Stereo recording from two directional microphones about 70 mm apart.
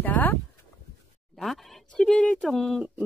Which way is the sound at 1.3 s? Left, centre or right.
Centre.